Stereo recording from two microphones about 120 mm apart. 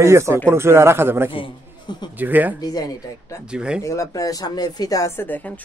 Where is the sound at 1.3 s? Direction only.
40° left (ahead or behind).